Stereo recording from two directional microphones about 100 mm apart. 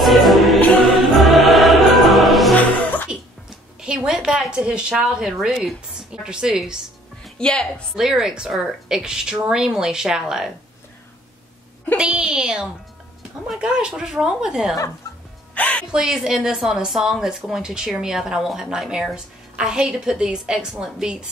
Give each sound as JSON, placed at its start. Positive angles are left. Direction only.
{"t": 0.0, "sound": "music", "side_deg": 0}
{"t": 2.5, "sound": "music", "side_deg": 15}
{"t": 3.1, "sound": "a sound", "side_deg": -10}
{"t": 7.2, "sound": "a woman's voice", "side_deg": 10}
{"t": 7.9, "sound": "a woman's voice", "side_deg": -5}
{"t": 12.0, "sound": "a woman's voice", "side_deg": -5}
{"t": 15.5, "sound": "speech", "side_deg": 15}
{"t": 15.9, "sound": "a woman's voice", "side_deg": -5}